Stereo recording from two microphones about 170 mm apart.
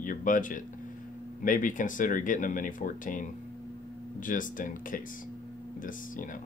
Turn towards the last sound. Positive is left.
turn(degrees=50)  # may be behind; listen again after turning